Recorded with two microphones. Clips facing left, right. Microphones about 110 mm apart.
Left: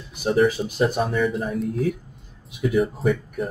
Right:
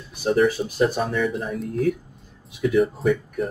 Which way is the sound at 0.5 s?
20° left (ahead or behind).